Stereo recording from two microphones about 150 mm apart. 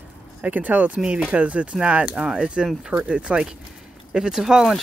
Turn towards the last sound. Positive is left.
turn(degrees=-5)  # may be behind; listen again after turning